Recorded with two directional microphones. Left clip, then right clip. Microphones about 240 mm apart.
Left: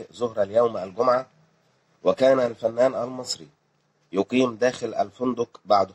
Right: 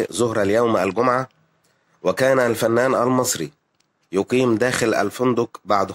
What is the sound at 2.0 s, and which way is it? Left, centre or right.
Speech, centre.